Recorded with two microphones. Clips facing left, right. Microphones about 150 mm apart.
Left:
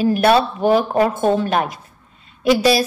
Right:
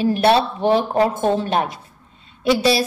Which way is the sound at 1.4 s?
30° right (ahead or behind).